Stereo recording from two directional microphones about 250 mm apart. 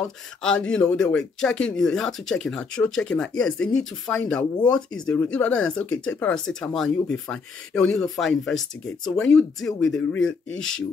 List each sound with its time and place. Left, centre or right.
0.0 s speech: centre
10.2 s speech: left